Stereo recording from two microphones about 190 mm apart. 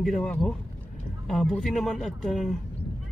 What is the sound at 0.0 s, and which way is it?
Speech, 5° left (ahead or behind).